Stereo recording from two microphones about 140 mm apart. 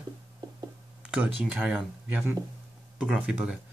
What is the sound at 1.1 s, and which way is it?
Speech, 10° right (ahead or behind).